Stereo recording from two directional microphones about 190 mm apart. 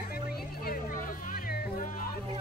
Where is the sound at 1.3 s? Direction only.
50° left (ahead or behind).